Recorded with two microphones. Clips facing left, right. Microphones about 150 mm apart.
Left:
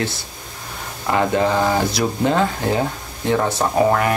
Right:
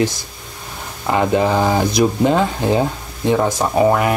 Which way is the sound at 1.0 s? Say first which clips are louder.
Right 2 dB; 15° right (ahead or behind).